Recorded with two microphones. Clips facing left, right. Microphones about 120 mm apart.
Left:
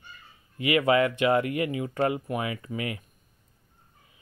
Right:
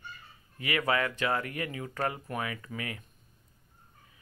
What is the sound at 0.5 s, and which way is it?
Speech, 20° left (ahead or behind).